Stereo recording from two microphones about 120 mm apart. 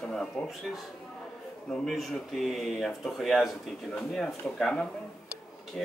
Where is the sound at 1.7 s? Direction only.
Centre (ahead or behind).